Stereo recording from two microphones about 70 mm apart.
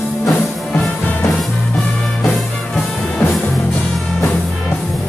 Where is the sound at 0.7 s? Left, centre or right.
Left.